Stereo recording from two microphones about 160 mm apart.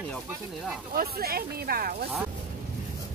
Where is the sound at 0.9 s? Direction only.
70° right (ahead or behind).